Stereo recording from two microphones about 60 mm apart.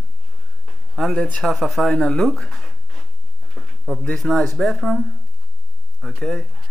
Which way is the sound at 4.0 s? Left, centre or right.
Centre.